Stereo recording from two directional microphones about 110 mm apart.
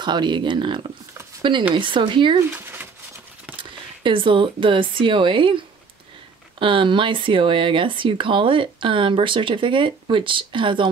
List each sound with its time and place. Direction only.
0.0 s speech: 45° right (ahead or behind)
2.5 s a sound: 20° right (ahead or behind)
4.0 s speech: 50° right (ahead or behind)
6.6 s speech: 50° right (ahead or behind)